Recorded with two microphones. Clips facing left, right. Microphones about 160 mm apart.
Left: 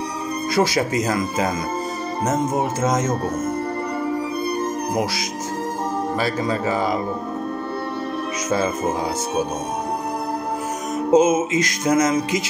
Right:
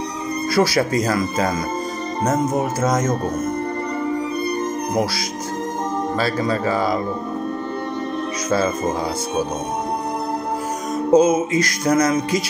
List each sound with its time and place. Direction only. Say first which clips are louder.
0.6 s music: right 2 dB; 20° left (ahead or behind)
2.8 s music: right 2 dB; 25° left (ahead or behind)
6.1 s speech: right 3 dB; 15° left (ahead or behind)
11.1 s music: right 1 dB; 20° left (ahead or behind)